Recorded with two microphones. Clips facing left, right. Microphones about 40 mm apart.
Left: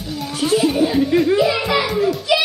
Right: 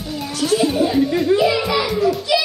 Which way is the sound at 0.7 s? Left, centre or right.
Centre.